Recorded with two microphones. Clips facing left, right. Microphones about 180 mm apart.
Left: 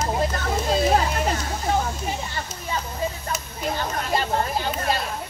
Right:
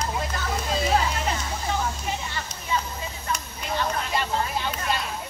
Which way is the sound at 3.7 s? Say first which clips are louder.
Even; 40° left (ahead or behind).